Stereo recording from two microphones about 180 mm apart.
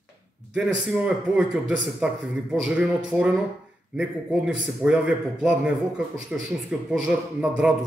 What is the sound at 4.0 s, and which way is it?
A man's voice, 5° right (ahead or behind).